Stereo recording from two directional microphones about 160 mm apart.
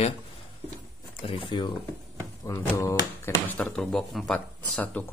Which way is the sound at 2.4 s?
20° left (ahead or behind).